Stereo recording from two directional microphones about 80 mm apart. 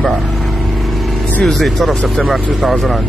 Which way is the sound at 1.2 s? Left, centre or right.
Centre.